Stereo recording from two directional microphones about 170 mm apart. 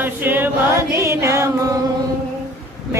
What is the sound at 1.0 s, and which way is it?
Music, 15° right (ahead or behind).